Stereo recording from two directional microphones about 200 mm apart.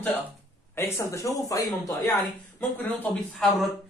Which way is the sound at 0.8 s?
15° left (ahead or behind).